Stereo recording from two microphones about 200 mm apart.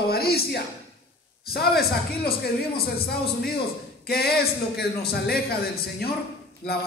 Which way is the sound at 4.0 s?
50° left (ahead or behind).